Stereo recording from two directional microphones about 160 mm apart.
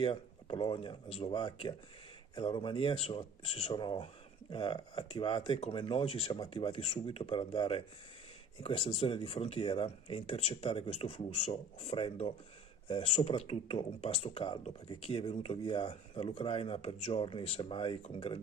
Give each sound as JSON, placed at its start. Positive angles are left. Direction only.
{"t": 0.0, "sound": "speech", "side_deg": 35}